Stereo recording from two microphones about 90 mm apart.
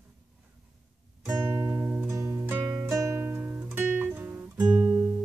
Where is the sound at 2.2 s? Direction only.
20° right (ahead or behind).